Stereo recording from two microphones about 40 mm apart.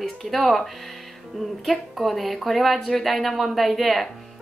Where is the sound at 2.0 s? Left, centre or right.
Centre.